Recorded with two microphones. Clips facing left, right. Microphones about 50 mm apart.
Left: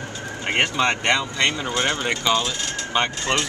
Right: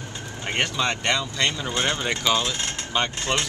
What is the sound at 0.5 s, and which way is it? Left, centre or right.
Speech, left.